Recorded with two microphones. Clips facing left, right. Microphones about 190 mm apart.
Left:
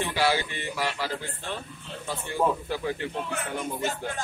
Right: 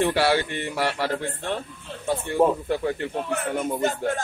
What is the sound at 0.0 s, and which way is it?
A man's voice, 60° right (ahead or behind).